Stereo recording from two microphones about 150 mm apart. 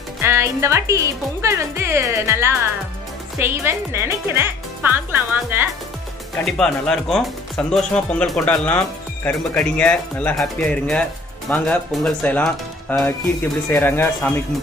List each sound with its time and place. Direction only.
0.2 s speech: 20° right (ahead or behind)
6.3 s speech: 5° left (ahead or behind)